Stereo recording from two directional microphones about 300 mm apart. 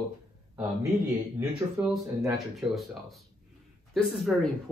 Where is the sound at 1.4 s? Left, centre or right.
Centre.